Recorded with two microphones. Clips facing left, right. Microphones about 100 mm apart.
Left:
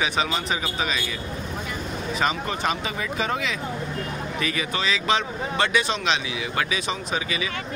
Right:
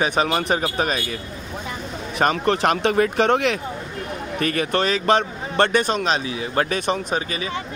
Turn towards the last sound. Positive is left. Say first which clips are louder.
# right 2 dB
turn(degrees=-40)  # may be behind; listen again after turning